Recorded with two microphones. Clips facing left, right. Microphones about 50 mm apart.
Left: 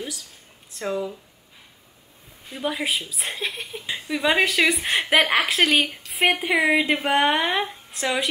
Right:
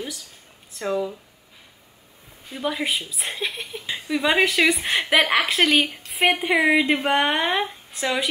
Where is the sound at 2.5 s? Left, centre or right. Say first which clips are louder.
Right 1 dB; centre.